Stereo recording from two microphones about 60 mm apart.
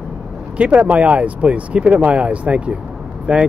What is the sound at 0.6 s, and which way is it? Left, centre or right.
Speech, right.